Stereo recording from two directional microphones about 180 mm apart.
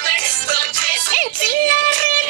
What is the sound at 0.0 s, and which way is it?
Music, 55° right (ahead or behind).